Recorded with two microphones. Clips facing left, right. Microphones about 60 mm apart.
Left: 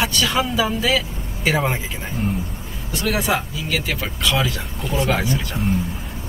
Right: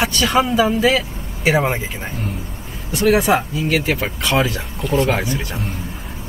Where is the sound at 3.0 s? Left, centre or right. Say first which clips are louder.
Right 7 dB; right.